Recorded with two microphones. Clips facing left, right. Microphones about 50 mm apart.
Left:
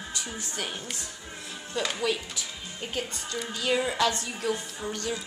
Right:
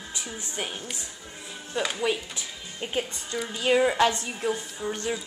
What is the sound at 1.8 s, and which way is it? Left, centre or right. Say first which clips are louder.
Speech: right 2 dB; centre.